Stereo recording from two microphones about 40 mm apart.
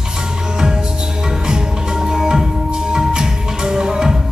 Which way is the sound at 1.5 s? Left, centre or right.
Centre.